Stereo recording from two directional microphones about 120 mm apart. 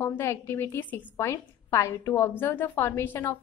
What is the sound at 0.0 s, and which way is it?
A woman's voice, 20° left (ahead or behind).